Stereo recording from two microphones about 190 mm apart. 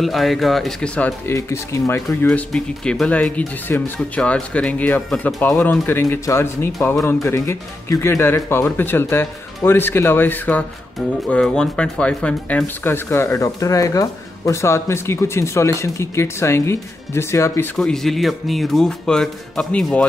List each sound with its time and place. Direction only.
0.0 s speech: centre (ahead or behind)
7.0 s speech: centre (ahead or behind)
7.2 s speech: 15° left (ahead or behind)
17.7 s speech: centre (ahead or behind)